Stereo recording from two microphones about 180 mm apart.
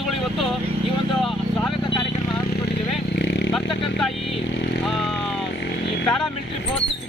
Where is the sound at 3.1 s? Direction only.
75° left (ahead or behind).